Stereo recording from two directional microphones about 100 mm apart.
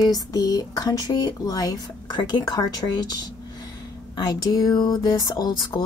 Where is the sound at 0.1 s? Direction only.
40° left (ahead or behind).